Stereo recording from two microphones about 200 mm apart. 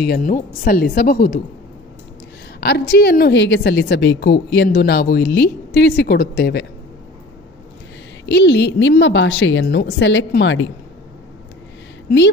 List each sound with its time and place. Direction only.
0.0 s a woman's voice: 45° left (ahead or behind)
2.6 s a woman's voice: 55° left (ahead or behind)
8.3 s a woman's voice: 60° left (ahead or behind)